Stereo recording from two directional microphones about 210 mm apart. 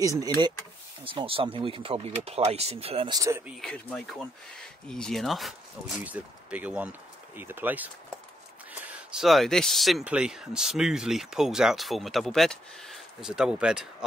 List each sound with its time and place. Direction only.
0.2 s speech: 20° right (ahead or behind)
3.2 s speech: 10° right (ahead or behind)
3.6 s speech: centre (ahead or behind)